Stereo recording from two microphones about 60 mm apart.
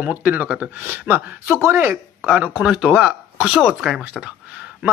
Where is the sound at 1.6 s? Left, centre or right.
Right.